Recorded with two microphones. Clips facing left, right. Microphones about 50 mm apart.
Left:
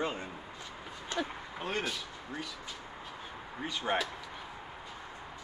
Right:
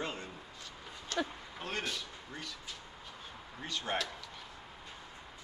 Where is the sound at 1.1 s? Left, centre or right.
Centre.